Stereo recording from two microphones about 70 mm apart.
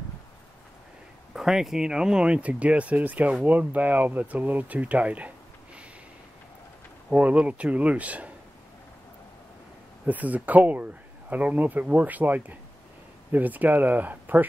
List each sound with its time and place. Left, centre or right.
1.3 s speech: centre
7.1 s speech: centre
10.0 s speech: right